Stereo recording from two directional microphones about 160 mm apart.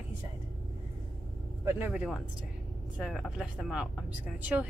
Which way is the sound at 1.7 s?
10° right (ahead or behind).